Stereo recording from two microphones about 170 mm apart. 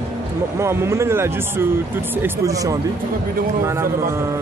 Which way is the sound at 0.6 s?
15° right (ahead or behind).